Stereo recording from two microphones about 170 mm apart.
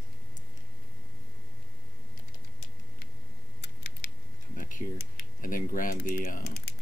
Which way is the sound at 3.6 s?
75° left (ahead or behind).